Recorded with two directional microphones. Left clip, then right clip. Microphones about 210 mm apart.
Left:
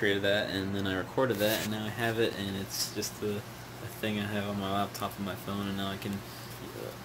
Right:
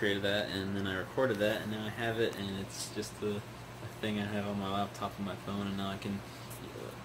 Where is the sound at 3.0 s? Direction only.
10° left (ahead or behind).